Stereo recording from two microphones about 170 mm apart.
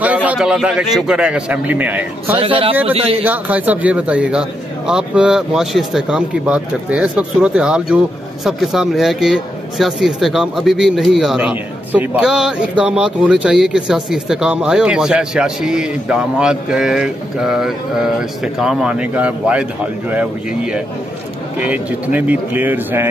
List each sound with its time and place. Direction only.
0.0 s a man's voice: 10° right (ahead or behind)
2.3 s speech: 30° right (ahead or behind)
3.3 s a man's voice: 10° right (ahead or behind)